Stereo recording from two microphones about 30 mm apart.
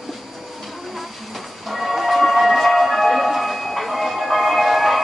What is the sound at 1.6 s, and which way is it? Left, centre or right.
Music, centre.